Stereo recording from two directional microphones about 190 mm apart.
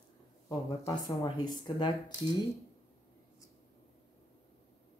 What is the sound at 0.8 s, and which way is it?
Speech, 20° left (ahead or behind).